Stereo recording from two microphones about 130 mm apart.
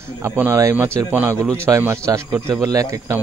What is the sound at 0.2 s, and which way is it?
A man's voice, 20° right (ahead or behind).